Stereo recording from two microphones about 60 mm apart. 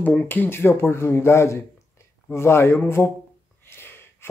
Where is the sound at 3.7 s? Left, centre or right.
Left.